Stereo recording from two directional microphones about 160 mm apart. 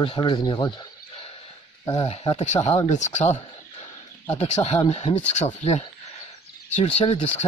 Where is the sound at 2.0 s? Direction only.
40° left (ahead or behind).